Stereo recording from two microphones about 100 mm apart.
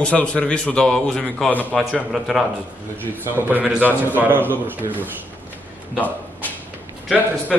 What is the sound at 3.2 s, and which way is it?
A man's voice, 20° right (ahead or behind).